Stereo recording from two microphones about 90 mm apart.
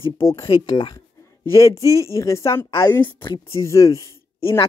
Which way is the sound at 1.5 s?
35° left (ahead or behind).